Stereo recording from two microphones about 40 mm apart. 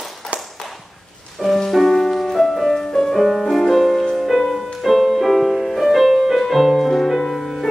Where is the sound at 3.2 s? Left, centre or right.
Centre.